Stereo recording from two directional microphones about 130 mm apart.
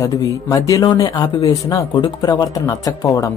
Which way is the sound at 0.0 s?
25° left (ahead or behind).